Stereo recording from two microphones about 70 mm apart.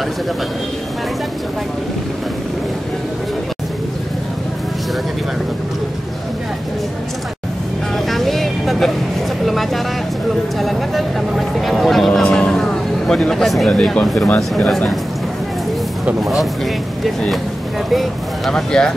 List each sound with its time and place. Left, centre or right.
8.1 s vehicle: centre
10.6 s a sound: centre
12.1 s vehicle: centre
13.7 s speech: centre
17.9 s speech: centre